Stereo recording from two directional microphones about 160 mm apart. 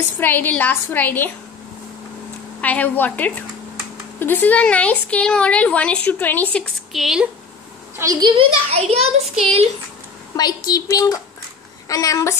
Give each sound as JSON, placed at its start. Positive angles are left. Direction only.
{"t": 0.2, "sound": "speech", "side_deg": 10}
{"t": 2.6, "sound": "speech", "side_deg": 10}
{"t": 8.0, "sound": "a child's voice", "side_deg": -20}
{"t": 8.4, "sound": "a child's voice", "side_deg": -40}
{"t": 10.3, "sound": "a woman's voice", "side_deg": 25}